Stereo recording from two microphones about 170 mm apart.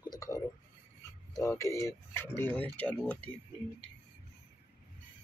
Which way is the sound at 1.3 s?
15° left (ahead or behind).